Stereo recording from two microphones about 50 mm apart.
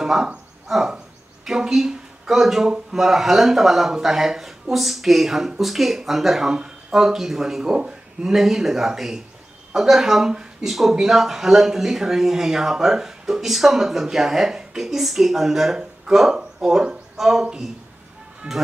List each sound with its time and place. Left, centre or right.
0.0 s a sound: centre
0.9 s speech: centre
18.4 s speech: right